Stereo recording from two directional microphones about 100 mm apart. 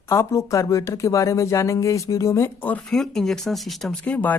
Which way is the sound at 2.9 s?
5° left (ahead or behind).